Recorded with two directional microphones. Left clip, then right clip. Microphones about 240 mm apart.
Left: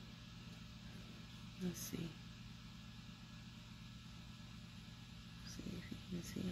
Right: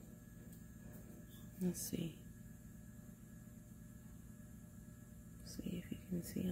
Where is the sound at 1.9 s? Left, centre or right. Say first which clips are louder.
Right 3 dB; right.